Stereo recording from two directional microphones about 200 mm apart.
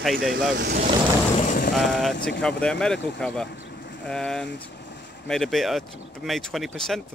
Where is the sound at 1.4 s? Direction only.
40° left (ahead or behind).